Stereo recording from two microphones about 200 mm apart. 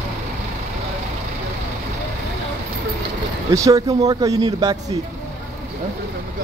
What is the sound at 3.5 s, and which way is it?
Speech, 15° right (ahead or behind).